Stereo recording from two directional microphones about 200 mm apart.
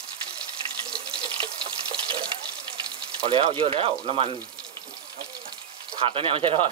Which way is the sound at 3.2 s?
25° right (ahead or behind).